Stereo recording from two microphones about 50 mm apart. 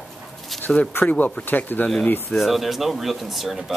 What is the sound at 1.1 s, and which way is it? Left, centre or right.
Speech, left.